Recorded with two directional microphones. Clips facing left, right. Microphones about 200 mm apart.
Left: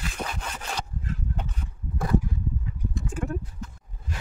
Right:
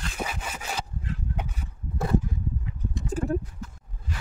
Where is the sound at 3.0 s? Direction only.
40° right (ahead or behind).